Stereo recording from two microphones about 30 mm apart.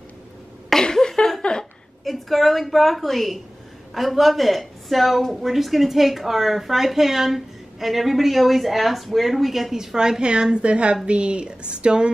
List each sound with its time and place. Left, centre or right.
0.7 s a sound: centre
2.0 s speech: centre
9.9 s a woman's voice: right